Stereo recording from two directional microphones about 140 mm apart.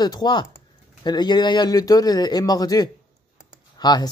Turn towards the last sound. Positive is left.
turn(degrees=30)  # may be behind; listen again after turning